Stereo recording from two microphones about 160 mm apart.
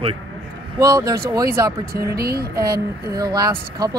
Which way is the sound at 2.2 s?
75° right (ahead or behind).